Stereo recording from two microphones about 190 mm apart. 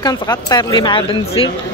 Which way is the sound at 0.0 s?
20° left (ahead or behind).